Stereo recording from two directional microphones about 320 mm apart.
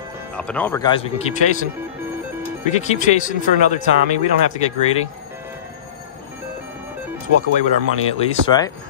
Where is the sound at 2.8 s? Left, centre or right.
Left.